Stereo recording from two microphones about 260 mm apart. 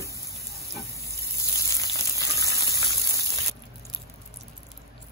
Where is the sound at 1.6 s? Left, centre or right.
Centre.